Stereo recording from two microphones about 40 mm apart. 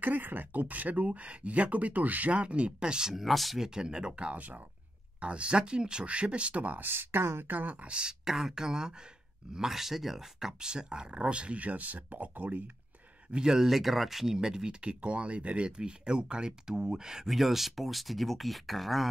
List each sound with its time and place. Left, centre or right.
0.0 s speech: right; by 3.2 s centre
3.2 s speech: centre
3.5 s speech: centre
4.1 s speech: right
6.8 s speech: right
7.4 s speech: right
8.1 s speech: centre
10.6 s speech: right
13.4 s speech: centre
14.8 s speech: right
17.3 s speech: centre